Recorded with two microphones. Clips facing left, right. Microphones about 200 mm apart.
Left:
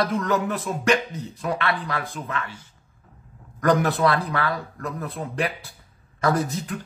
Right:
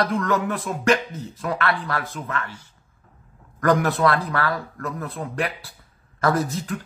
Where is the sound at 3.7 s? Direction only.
Centre (ahead or behind).